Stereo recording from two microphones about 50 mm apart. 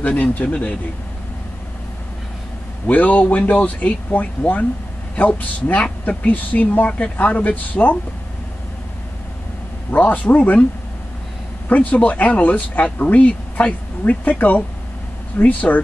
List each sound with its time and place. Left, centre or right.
0.0 s speech: left
2.9 s speech: left
9.8 s speech: left
11.7 s speech: left